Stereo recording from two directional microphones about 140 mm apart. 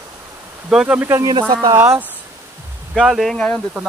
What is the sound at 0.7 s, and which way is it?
Speech, 5° right (ahead or behind).